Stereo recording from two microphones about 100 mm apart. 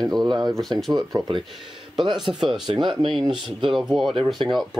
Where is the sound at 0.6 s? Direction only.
Centre (ahead or behind).